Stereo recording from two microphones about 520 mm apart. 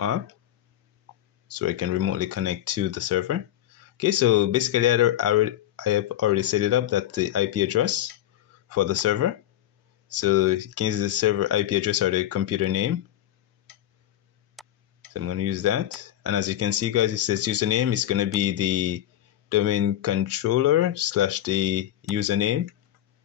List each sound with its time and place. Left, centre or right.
1.5 s speech: right
14.6 s burping: centre
15.1 s speech: right